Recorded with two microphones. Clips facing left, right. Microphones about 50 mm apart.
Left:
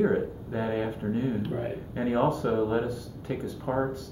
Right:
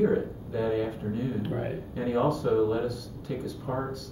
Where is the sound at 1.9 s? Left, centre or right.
Left.